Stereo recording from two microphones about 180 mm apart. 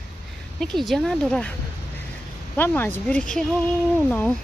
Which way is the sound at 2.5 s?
10° left (ahead or behind).